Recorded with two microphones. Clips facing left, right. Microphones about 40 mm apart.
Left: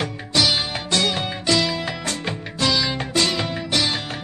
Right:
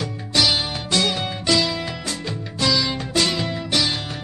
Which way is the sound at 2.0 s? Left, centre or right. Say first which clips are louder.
Left 2 dB; left.